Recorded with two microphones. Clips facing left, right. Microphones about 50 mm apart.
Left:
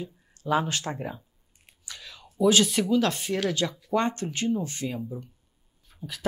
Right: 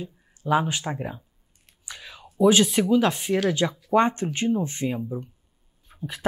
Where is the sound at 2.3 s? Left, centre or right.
Centre.